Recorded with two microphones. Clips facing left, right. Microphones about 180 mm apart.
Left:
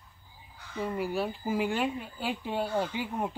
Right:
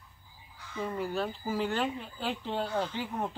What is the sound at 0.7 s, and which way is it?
Speech, 10° left (ahead or behind).